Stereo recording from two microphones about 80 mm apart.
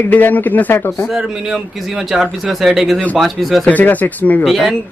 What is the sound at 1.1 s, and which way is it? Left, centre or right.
A man's voice, centre.